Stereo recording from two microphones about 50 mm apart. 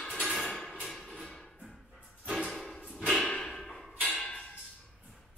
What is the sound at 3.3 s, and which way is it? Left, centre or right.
Thump, centre.